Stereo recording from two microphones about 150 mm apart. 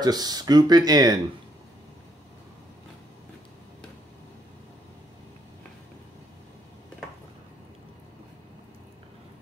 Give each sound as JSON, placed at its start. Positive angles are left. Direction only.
{"t": 0.0, "sound": "speech", "side_deg": -25}